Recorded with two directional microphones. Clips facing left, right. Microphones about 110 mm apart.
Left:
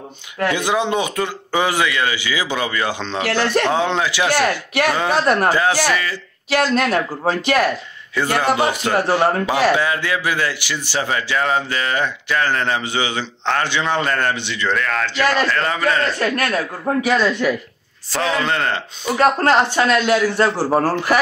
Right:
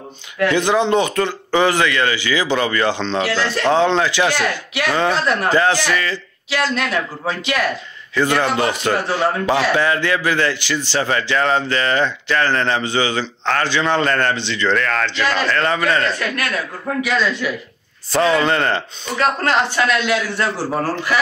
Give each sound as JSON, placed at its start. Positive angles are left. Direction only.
{"t": 0.5, "sound": "a man's voice", "side_deg": 15}
{"t": 3.3, "sound": "a man's voice", "side_deg": 55}
{"t": 3.7, "sound": "a man's voice", "side_deg": 10}
{"t": 4.4, "sound": "speech", "side_deg": 45}
{"t": 5.5, "sound": "a man's voice", "side_deg": 10}
{"t": 6.5, "sound": "speech", "side_deg": 45}
{"t": 8.1, "sound": "a man's voice", "side_deg": 10}
{"t": 16.2, "sound": "a man's voice", "side_deg": 40}
{"t": 18.1, "sound": "a man's voice", "side_deg": 0}
{"t": 19.1, "sound": "a man's voice", "side_deg": 35}